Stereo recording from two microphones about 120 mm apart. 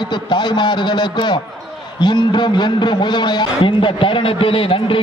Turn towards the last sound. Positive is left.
turn(degrees=45)  # may be behind; listen again after turning